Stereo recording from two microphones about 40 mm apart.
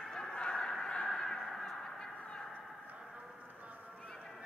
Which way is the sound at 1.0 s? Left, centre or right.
Centre.